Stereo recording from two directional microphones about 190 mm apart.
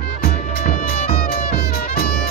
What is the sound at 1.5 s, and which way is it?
Music, 55° left (ahead or behind).